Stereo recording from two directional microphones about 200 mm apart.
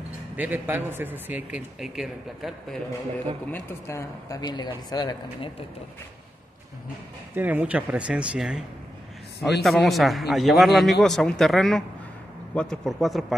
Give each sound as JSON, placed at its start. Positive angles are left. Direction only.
{"t": 0.4, "sound": "a man's voice", "side_deg": -10}
{"t": 3.5, "sound": "speech", "side_deg": 15}
{"t": 7.3, "sound": "a man's voice", "side_deg": -10}